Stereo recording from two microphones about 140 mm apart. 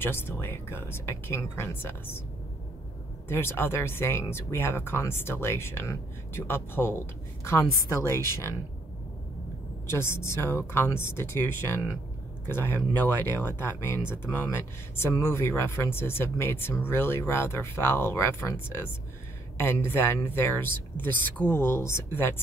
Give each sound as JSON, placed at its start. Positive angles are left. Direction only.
{"t": 0.0, "sound": "speech", "side_deg": 15}
{"t": 3.3, "sound": "a woman's voice", "side_deg": 15}
{"t": 9.8, "sound": "speech", "side_deg": 20}